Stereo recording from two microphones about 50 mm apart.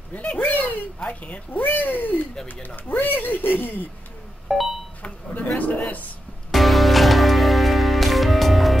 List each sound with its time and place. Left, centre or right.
0.1 s speech: left
0.5 s a sound: left
0.9 s speech: left
4.5 s a sound: centre
5.0 s chink: left
5.6 s speech: left
6.5 s music: centre